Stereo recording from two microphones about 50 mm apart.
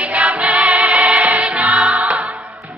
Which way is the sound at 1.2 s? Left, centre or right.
Right.